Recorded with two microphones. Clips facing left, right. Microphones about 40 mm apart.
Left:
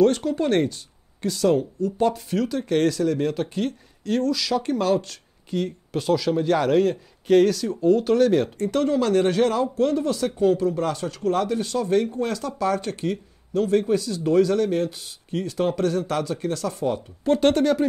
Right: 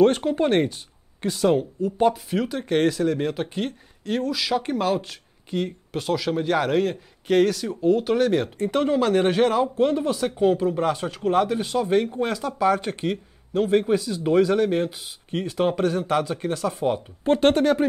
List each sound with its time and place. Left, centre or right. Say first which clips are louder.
0.0 s a man's voice: right 1 dB; right